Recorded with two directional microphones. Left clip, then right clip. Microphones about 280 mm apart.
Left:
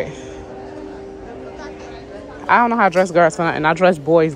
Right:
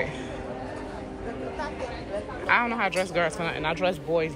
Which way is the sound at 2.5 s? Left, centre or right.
Centre.